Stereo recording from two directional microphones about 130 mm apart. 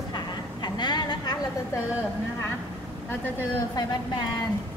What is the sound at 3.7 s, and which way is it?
Speech, 30° left (ahead or behind).